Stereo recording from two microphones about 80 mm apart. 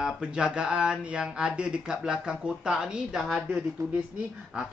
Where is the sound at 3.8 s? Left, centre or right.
Right.